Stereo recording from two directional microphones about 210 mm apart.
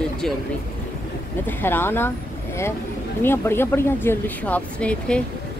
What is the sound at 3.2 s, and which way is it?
Speech, 10° left (ahead or behind).